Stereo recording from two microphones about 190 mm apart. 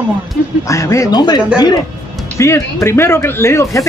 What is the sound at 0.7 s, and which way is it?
Speech, 15° left (ahead or behind).